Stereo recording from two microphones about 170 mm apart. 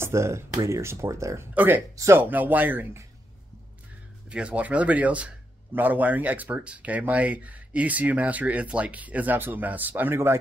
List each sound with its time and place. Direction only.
0.0 s speech: 15° right (ahead or behind)
4.3 s speech: 5° right (ahead or behind)